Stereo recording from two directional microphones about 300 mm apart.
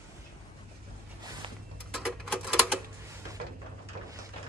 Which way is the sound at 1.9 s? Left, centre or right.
Centre.